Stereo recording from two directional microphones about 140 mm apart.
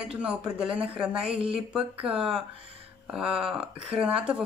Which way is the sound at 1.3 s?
40° right (ahead or behind).